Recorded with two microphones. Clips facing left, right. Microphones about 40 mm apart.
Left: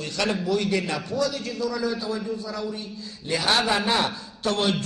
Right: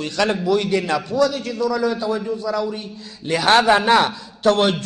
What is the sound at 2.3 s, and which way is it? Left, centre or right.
Speech, right.